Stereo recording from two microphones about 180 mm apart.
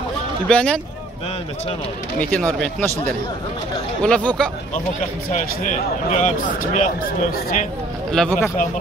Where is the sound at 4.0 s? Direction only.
5° left (ahead or behind).